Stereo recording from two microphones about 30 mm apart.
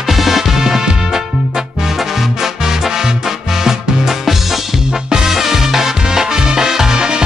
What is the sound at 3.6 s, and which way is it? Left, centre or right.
Music, centre.